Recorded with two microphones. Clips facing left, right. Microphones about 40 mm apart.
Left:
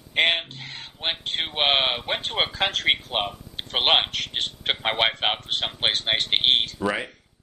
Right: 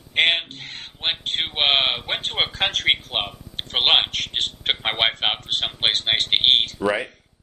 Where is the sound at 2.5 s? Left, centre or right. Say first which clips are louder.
Right 1 dB; right.